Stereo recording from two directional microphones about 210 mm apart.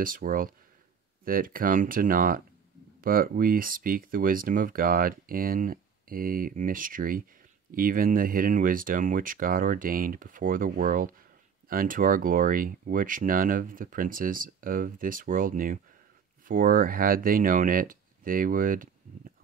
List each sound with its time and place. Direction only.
0.0 s speech: 40° right (ahead or behind)